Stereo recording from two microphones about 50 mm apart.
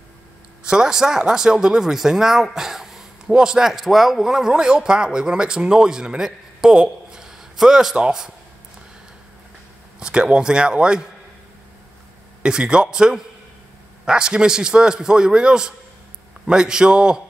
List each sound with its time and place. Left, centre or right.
0.7 s speech: centre
9.9 s speech: centre
12.4 s speech: centre